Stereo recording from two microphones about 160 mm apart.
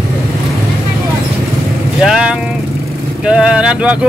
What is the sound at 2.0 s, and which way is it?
Speech, 5° right (ahead or behind).